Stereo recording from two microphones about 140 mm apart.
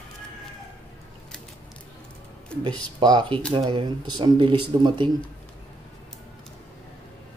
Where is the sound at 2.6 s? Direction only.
30° right (ahead or behind).